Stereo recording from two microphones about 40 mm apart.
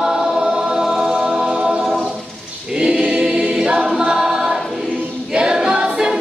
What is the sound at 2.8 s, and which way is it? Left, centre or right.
Choir, right.